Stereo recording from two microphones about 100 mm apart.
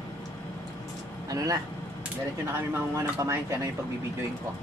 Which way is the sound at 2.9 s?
30° right (ahead or behind).